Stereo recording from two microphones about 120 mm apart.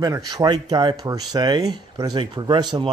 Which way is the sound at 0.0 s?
35° right (ahead or behind).